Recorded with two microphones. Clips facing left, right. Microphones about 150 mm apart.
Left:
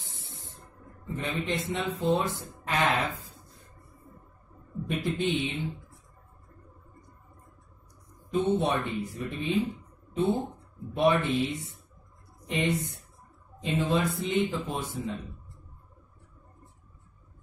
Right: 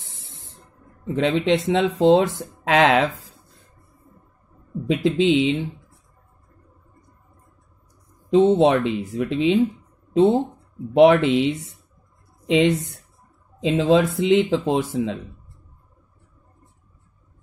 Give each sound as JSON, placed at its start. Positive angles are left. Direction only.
{"t": 0.0, "sound": "spray", "side_deg": -90}
{"t": 1.0, "sound": "speech", "side_deg": -90}
{"t": 4.8, "sound": "speech", "side_deg": -90}
{"t": 8.3, "sound": "speech", "side_deg": -90}
{"t": 11.0, "sound": "speech", "side_deg": -90}